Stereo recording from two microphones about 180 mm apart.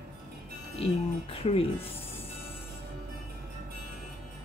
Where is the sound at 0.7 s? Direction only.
35° left (ahead or behind).